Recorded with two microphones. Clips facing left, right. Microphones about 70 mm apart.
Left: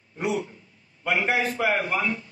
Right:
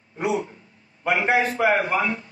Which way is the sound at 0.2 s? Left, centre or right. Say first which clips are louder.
Right 3 dB; right.